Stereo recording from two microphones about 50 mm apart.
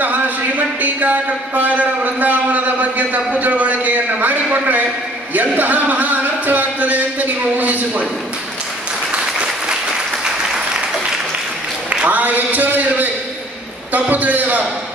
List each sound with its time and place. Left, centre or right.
0.0 s speech: right
9.1 s applause: right
12.1 s speech: right